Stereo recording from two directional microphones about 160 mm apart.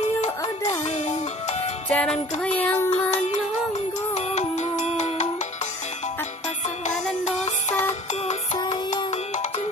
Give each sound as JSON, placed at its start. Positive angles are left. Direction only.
{"t": 0.8, "sound": "music", "side_deg": 45}
{"t": 1.9, "sound": "music", "side_deg": 5}
{"t": 2.4, "sound": "a sound", "side_deg": 10}
{"t": 4.1, "sound": "music", "side_deg": 45}
{"t": 7.2, "sound": "music", "side_deg": 45}